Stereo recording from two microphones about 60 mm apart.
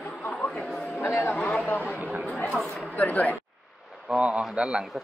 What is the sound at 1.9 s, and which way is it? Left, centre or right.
Speech, right.